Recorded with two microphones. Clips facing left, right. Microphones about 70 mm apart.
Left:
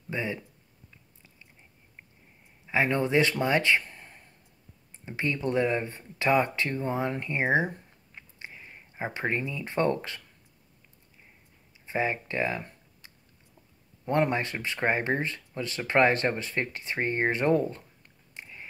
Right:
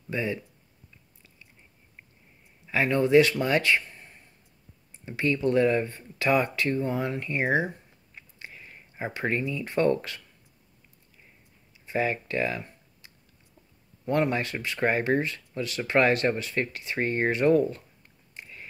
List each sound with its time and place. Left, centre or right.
0.1 s speech: left
2.6 s speech: left
8.4 s a sound: left
8.9 s speech: left
11.8 s speech: left
14.0 s speech: left
18.4 s a sound: left